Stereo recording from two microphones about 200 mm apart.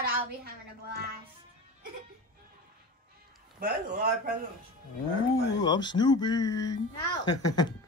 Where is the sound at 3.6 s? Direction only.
50° right (ahead or behind).